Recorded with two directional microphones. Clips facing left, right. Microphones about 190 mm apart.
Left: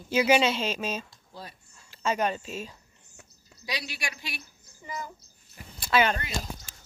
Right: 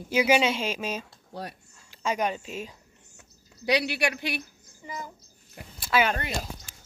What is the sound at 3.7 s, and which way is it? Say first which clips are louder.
Speech: right 11 dB; 65° right (ahead or behind).